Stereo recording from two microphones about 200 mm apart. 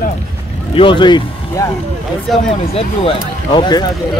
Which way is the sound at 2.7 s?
25° left (ahead or behind).